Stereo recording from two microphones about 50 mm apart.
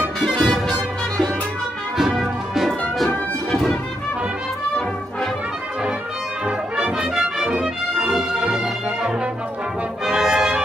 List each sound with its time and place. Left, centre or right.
0.2 s music: centre
2.0 s music: centre
6.4 s music: centre
10.0 s brass instrument: centre